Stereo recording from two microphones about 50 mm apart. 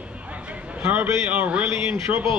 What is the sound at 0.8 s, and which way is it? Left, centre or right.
A man's voice, right.